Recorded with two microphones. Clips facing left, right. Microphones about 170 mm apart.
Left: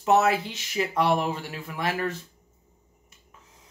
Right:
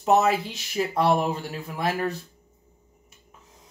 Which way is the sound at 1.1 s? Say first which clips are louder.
Right 2 dB; 35° right (ahead or behind).